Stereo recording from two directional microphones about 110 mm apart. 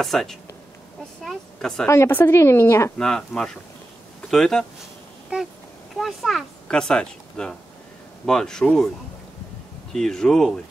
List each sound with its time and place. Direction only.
0.0 s speech: centre (ahead or behind)
1.9 s a woman's voice: 20° left (ahead or behind)
3.0 s speech: 5° left (ahead or behind)
5.3 s speech: 10° right (ahead or behind); by 8.9 s 5° left (ahead or behind)
9.9 s speech: 5° left (ahead or behind)